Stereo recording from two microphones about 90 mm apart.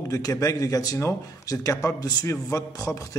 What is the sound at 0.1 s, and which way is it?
A man's voice, 40° left (ahead or behind).